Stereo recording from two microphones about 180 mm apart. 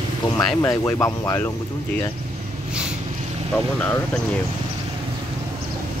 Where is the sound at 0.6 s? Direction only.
15° left (ahead or behind).